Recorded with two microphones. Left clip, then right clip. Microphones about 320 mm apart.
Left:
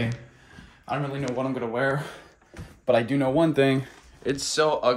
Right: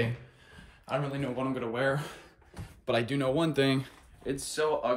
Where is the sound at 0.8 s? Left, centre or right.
Centre.